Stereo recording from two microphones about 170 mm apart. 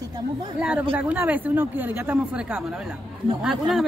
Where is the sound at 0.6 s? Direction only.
5° right (ahead or behind).